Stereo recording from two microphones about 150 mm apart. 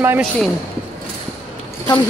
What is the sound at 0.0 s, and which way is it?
Speech, 15° right (ahead or behind).